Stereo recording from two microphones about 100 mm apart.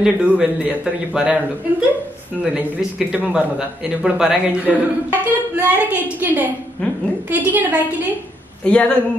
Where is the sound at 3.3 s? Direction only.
5° right (ahead or behind).